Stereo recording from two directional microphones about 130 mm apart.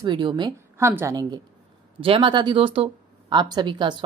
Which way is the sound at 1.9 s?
40° right (ahead or behind).